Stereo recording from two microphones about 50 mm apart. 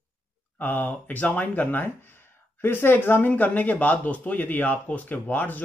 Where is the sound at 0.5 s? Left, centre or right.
Left.